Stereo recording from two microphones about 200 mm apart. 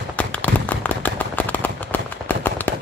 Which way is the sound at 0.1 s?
5° left (ahead or behind).